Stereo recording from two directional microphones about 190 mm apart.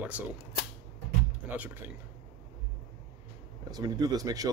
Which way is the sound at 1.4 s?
10° right (ahead or behind).